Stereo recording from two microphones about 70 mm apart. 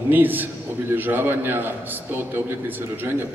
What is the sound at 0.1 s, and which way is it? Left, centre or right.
A man's voice, right.